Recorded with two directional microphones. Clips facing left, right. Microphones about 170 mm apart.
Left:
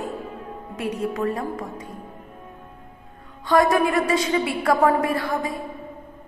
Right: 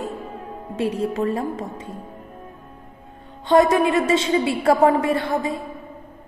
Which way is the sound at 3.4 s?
25° right (ahead or behind).